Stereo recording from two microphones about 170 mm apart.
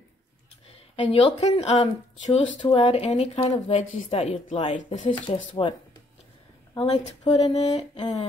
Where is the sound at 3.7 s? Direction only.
45° left (ahead or behind).